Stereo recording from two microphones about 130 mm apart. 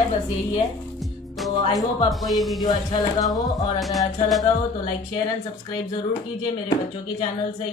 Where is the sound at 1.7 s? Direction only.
30° left (ahead or behind).